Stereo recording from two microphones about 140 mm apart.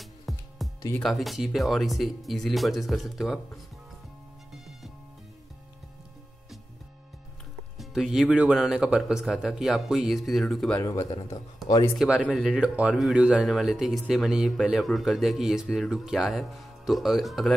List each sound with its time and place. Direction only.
0.0 s music: centre (ahead or behind)
1.0 s speech: centre (ahead or behind)
7.7 s speech: centre (ahead or behind)
10.8 s speech: 25° left (ahead or behind)
12.0 s speech: 5° right (ahead or behind)